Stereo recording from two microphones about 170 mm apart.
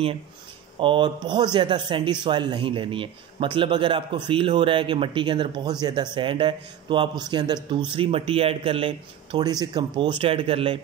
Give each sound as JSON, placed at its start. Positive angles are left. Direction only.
{"t": 0.7, "sound": "speech", "side_deg": -30}